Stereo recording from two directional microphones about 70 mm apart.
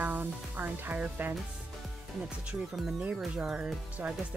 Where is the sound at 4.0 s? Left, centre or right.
Right.